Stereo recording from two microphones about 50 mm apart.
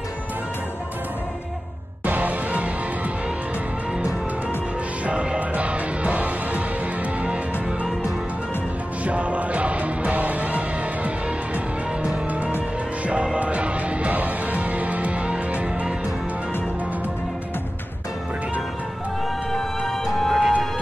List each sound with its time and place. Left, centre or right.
2.0 s music: right
5.0 s music: right
9.0 s music: right
19.9 s music: centre